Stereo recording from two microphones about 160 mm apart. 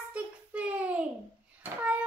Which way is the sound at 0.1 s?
10° right (ahead or behind).